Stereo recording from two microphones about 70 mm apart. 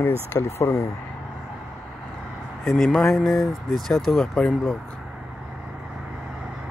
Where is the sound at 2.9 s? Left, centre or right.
Centre.